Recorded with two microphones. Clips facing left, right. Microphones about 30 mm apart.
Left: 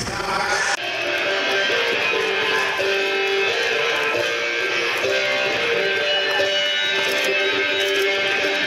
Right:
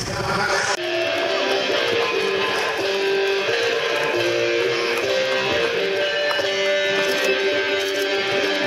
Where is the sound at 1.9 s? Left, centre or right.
Left.